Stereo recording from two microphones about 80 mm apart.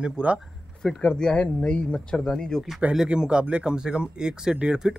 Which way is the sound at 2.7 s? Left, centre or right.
Centre.